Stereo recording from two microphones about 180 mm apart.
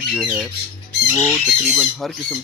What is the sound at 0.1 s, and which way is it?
Speech, 5° right (ahead or behind).